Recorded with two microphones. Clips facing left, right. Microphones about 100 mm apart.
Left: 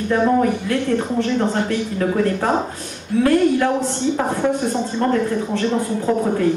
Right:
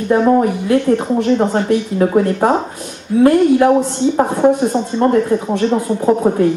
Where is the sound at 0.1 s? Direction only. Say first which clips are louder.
Right 5 dB; 25° right (ahead or behind).